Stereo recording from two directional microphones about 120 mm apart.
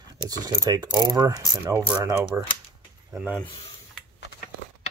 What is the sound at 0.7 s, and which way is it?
Mechanisms, 35° right (ahead or behind).